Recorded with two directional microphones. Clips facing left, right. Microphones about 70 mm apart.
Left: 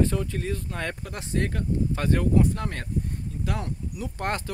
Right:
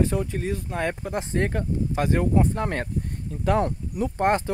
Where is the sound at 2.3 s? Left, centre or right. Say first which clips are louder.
Right 1 dB; right.